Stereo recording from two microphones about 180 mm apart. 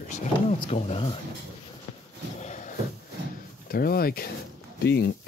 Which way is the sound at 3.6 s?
55° left (ahead or behind).